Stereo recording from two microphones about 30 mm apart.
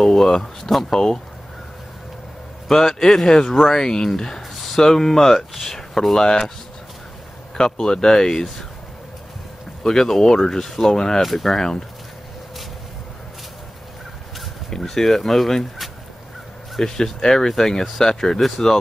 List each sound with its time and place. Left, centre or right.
0.0 s a sound: centre
0.4 s speech: centre
0.9 s speech: left
2.7 s speech: centre
6.1 s speech: left
7.5 s speech: left
9.8 s speech: centre
11.1 s speech: centre
11.5 s speech: centre
14.8 s speech: centre
16.8 s speech: centre